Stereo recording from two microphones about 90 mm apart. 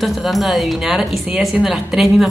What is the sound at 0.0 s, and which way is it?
Speech, centre (ahead or behind).